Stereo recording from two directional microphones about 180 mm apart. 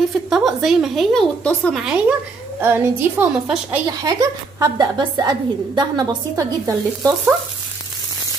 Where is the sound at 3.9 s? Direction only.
20° right (ahead or behind).